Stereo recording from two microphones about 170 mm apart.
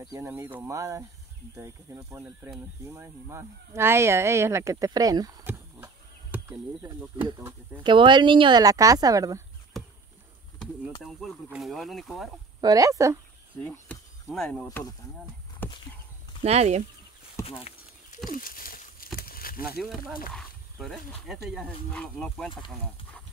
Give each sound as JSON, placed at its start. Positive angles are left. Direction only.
{"t": 0.0, "sound": "speech", "side_deg": -15}
{"t": 7.8, "sound": "speech", "side_deg": -30}
{"t": 10.6, "sound": "speech", "side_deg": 0}
{"t": 12.5, "sound": "speech", "side_deg": -20}
{"t": 13.7, "sound": "speech", "side_deg": 5}
{"t": 15.6, "sound": "a sound", "side_deg": 10}
{"t": 16.4, "sound": "speech", "side_deg": -40}
{"t": 17.5, "sound": "a sound", "side_deg": 40}
{"t": 18.3, "sound": "a sound", "side_deg": 55}
{"t": 19.8, "sound": "speech", "side_deg": 0}